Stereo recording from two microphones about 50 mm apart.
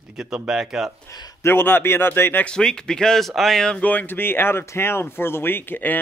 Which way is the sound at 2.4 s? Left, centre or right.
Centre.